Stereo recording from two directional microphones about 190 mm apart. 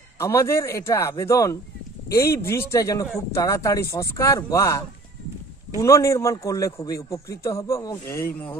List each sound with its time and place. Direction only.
0.2 s a man's voice: 15° left (ahead or behind)